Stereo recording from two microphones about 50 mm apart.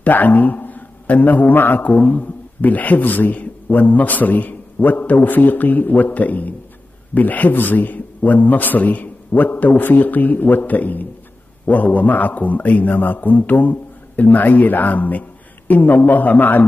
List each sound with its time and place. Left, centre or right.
0.0 s a man's voice: left
1.8 s a man's voice: left